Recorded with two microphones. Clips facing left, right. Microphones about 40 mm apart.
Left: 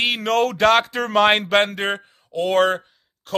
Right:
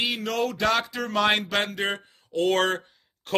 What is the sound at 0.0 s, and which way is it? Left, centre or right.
Speech, left.